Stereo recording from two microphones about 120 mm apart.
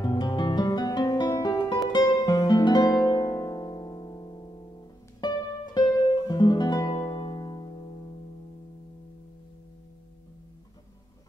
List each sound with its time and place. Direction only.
0.0 s music: 40° left (ahead or behind)